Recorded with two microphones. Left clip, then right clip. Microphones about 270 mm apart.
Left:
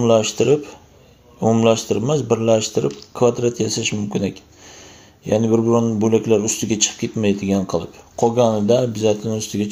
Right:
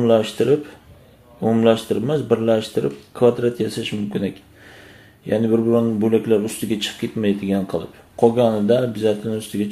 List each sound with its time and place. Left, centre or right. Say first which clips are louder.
0.0 s speech: left 1 dB; centre